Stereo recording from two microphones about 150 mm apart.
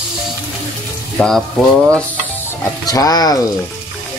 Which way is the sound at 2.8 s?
25° left (ahead or behind).